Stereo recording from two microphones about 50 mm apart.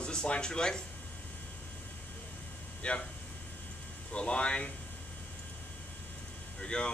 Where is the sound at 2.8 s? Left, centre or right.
Left.